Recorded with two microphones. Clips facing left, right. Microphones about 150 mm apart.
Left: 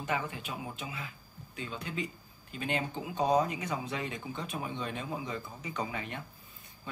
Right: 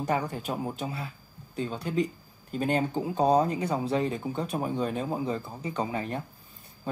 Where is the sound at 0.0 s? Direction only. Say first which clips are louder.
Right 6 dB; 40° right (ahead or behind).